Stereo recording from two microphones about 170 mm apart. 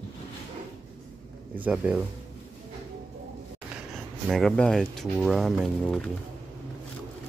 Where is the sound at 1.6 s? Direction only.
10° right (ahead or behind).